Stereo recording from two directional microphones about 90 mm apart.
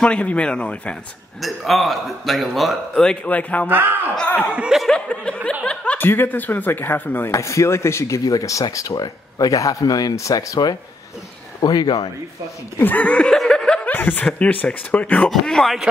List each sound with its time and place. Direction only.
0.0 s speech: 15° left (ahead or behind)
1.4 s a man's voice: centre (ahead or behind); by 3.6 s 15° left (ahead or behind)
3.6 s speech: 25° right (ahead or behind)
4.4 s speech: 10° right (ahead or behind)
4.8 s laughter: 10° left (ahead or behind)
5.9 s speech: 25° left (ahead or behind)
7.2 s speech: 35° left (ahead or behind)
12.7 s snicker: 20° left (ahead or behind)
13.8 s snicker: 20° left (ahead or behind)
14.2 s speech: 15° left (ahead or behind)
15.2 s a man's voice: 5° left (ahead or behind)